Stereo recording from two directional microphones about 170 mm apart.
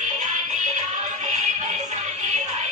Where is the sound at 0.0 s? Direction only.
45° right (ahead or behind).